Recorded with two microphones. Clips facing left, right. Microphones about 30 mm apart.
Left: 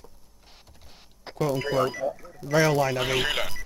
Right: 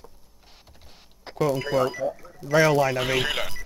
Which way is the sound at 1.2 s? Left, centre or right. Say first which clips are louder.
Right 2 dB; centre.